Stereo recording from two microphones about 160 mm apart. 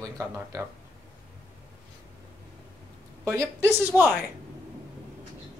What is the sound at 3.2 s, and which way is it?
Speech, 15° right (ahead or behind).